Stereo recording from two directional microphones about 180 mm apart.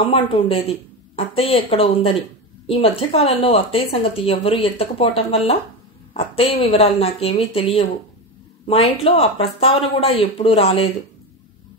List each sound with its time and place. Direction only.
0.0 s speech: 30° left (ahead or behind)